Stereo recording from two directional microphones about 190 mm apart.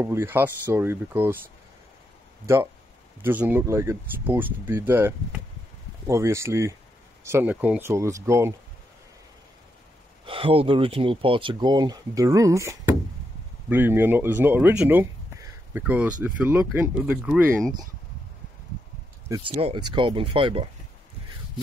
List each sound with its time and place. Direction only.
0.0 s speech: 15° right (ahead or behind)
2.4 s speech: 15° right (ahead or behind)
10.2 s speech: 30° right (ahead or behind); by 17.7 s centre (ahead or behind)
19.2 s speech: 15° right (ahead or behind)